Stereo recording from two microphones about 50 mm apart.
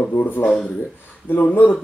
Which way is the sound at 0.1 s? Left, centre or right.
Left.